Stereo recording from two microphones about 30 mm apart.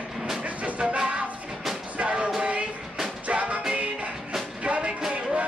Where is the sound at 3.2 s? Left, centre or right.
Right.